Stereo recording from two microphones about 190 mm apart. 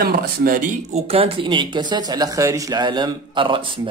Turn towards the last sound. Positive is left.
turn(degrees=-25)  # may be behind; listen again after turning